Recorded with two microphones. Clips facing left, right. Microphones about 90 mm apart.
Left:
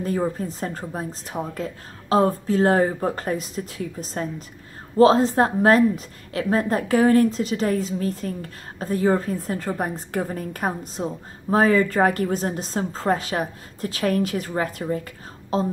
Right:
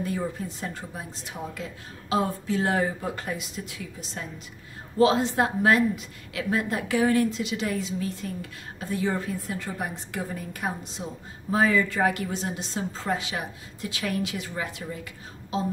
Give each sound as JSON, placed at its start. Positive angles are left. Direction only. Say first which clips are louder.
{"t": 0.0, "sound": "a woman's voice", "louder": "left 6 dB", "side_deg": 40}